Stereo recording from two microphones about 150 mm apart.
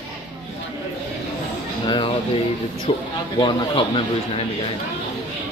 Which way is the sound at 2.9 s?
40° left (ahead or behind).